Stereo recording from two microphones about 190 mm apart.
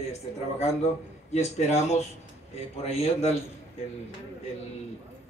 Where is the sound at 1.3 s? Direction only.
35° left (ahead or behind).